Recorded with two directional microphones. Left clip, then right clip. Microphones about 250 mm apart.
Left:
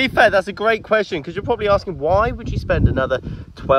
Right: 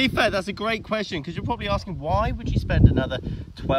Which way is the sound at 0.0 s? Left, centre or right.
Centre.